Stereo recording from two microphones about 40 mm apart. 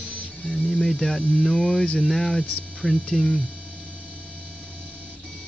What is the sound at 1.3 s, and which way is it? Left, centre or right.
Speech, centre.